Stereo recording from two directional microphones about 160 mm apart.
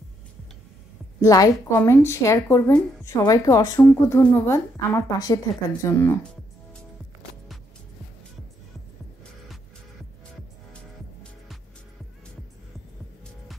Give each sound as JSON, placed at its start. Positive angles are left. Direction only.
{"t": 1.2, "sound": "a woman's voice", "side_deg": 20}